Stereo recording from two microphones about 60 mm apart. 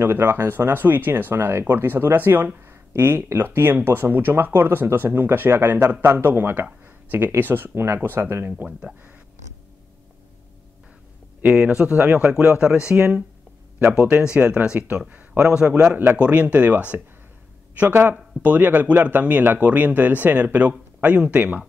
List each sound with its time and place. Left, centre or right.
0.0 s speech: right
11.4 s speech: centre
13.7 s speech: right
14.4 s speech: right
15.7 s speech: right